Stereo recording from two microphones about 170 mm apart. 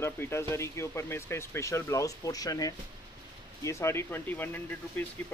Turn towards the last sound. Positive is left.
turn(degrees=10)  # may be behind; listen again after turning